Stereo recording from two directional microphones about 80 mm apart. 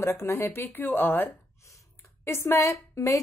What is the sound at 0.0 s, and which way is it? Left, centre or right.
A woman's voice, left.